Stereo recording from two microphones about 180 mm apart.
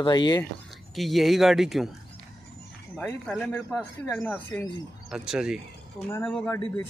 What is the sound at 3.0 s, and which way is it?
A man's voice, 5° left (ahead or behind).